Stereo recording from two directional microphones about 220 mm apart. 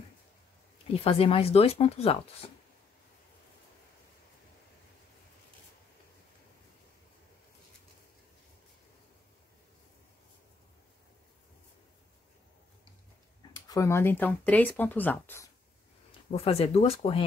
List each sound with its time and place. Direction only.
1.0 s speech: 25° left (ahead or behind)
13.7 s speech: 15° left (ahead or behind)
16.3 s speech: 25° left (ahead or behind)